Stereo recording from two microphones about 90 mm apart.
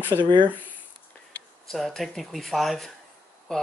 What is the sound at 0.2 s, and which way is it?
Speech, 60° right (ahead or behind).